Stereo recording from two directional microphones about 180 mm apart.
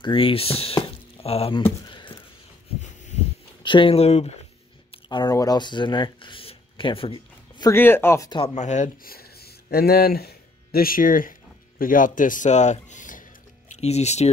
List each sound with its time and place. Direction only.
0.0 s speech: 30° left (ahead or behind)
1.9 s a sound: 25° left (ahead or behind)
2.8 s heart sounds: 40° left (ahead or behind)
3.6 s speech: 30° left (ahead or behind)
7.7 s speech: 10° left (ahead or behind)
8.5 s speech: 40° left (ahead or behind)
13.7 s speech: 35° left (ahead or behind)